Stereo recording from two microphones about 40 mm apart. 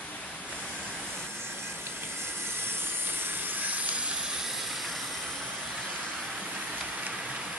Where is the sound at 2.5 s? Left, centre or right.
Right.